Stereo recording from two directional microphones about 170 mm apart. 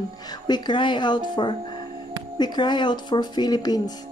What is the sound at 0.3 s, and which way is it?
Speech, 25° left (ahead or behind).